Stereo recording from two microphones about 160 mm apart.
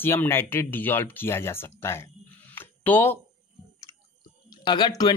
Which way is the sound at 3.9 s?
25° left (ahead or behind).